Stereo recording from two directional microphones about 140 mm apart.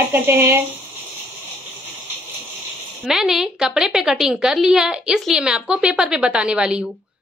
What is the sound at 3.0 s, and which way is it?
A woman's voice, 5° right (ahead or behind).